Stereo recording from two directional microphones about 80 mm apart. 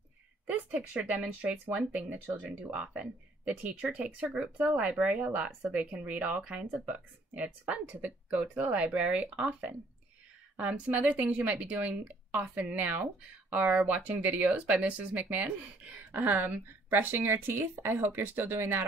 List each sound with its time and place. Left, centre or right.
0.9 s speech: centre